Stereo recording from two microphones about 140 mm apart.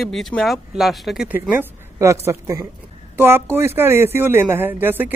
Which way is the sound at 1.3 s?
15° right (ahead or behind).